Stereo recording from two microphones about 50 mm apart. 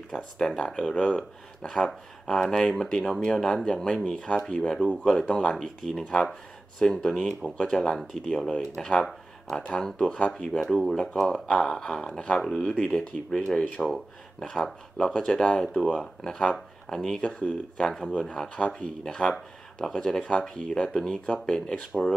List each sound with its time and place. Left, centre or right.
0.1 s speech: centre
5.5 s speech: centre
9.6 s speech: centre
10.6 s speech: centre
11.0 s speech: centre
13.8 s speech: centre
17.3 s speech: left